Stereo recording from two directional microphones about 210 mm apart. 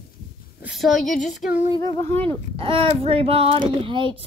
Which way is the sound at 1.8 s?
10° left (ahead or behind).